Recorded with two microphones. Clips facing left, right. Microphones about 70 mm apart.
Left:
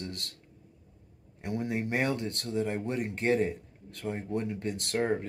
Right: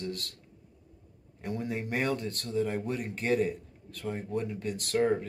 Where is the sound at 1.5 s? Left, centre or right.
Left.